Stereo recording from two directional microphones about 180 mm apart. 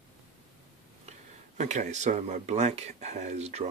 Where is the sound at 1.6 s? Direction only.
40° right (ahead or behind).